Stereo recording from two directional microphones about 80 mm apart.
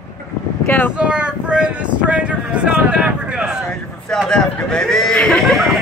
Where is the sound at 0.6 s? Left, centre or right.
Left.